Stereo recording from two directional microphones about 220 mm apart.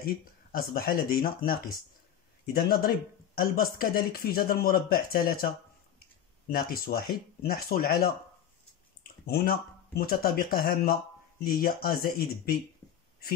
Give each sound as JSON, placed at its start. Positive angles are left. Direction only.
{"t": 0.0, "sound": "speech", "side_deg": 40}
{"t": 6.5, "sound": "speech", "side_deg": 40}
{"t": 12.8, "sound": "a sound", "side_deg": 15}